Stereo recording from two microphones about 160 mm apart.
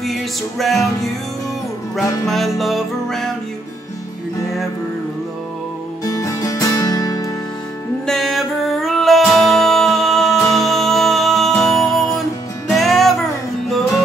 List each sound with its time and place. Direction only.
0.0 s music: centre (ahead or behind)
2.0 s music: centre (ahead or behind)
6.0 s music: 20° left (ahead or behind)
8.1 s music: centre (ahead or behind)